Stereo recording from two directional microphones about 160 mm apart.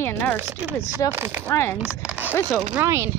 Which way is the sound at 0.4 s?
15° right (ahead or behind).